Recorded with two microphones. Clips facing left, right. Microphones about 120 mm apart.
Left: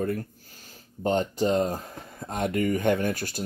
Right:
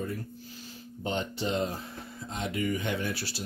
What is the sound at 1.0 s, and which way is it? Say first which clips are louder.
Speech: left 8 dB; 45° left (ahead or behind).